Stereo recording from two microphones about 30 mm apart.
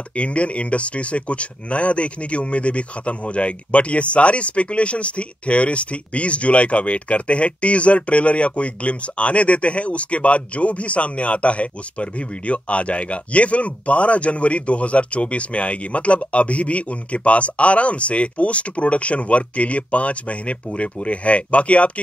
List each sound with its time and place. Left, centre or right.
0.1 s speech: left